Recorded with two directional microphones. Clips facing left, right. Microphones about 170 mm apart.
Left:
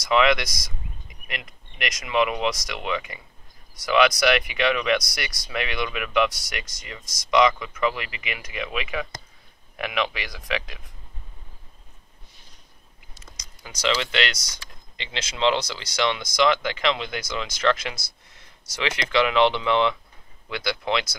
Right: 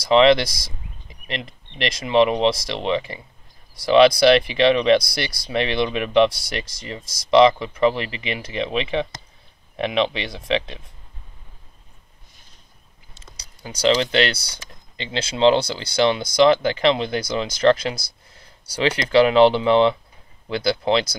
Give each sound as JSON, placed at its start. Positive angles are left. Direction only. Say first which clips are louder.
{"t": 0.0, "sound": "speech", "louder": "right 6 dB", "side_deg": -30}
{"t": 13.1, "sound": "speech", "louder": "right 1 dB", "side_deg": -30}